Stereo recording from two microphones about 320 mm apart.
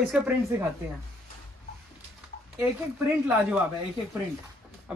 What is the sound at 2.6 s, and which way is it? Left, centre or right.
Speech, centre.